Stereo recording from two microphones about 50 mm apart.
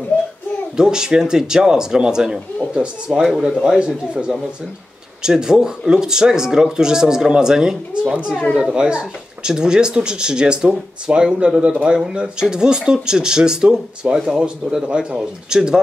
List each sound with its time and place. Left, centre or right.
0.7 s speech: centre
3.2 s speech: centre
3.6 s speech: centre